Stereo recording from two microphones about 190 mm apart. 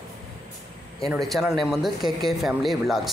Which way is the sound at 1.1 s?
Centre (ahead or behind).